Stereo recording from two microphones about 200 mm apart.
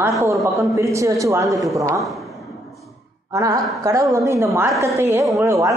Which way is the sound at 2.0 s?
Centre (ahead or behind).